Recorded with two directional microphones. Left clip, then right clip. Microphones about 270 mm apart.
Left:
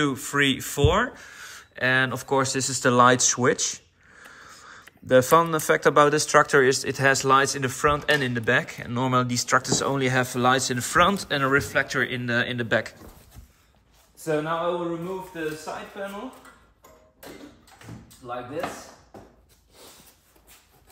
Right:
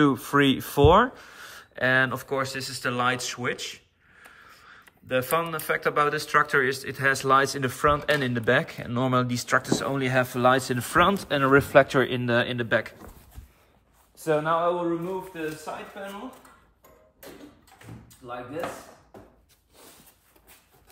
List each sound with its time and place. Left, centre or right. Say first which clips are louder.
0.0 s speech: right 2 dB; centre
11.5 s speech: right 8 dB; centre
14.2 s speech: right 2 dB; centre
15.3 s speech: left 2 dB; centre
18.2 s speech: left 2 dB; centre